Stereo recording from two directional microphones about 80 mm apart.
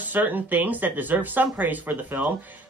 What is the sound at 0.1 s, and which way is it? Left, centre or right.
Speech, right.